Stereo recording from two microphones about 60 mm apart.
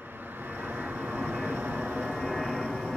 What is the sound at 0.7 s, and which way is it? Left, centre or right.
Vehicle, right.